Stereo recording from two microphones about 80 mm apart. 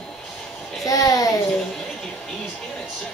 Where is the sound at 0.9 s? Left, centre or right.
Left.